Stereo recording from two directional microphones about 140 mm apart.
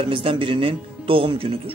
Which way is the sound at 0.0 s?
40° right (ahead or behind).